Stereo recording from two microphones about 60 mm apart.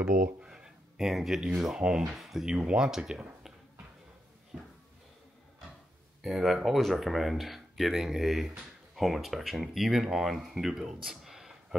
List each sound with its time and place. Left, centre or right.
0.0 s a sound: centre
1.6 s speech: centre
6.2 s speech: centre